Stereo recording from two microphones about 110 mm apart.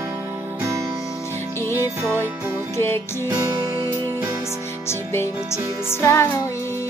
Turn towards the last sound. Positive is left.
turn(degrees=20)  # may be behind; listen again after turning